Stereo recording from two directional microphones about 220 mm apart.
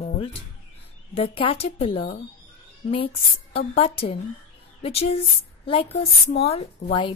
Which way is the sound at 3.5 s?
25° left (ahead or behind).